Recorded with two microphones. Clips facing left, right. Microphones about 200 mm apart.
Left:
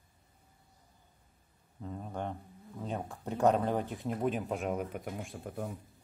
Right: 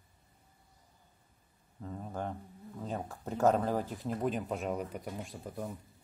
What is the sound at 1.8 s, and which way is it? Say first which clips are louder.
Speech: even; centre (ahead or behind).